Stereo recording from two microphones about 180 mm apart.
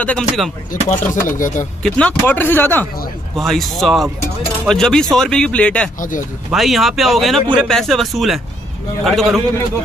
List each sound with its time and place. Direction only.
0.0 s speech: 5° left (ahead or behind)
1.3 s speech: 45° left (ahead or behind)
1.8 s speech: 5° left (ahead or behind)
5.9 s speech: 45° left (ahead or behind)
6.5 s speech: centre (ahead or behind)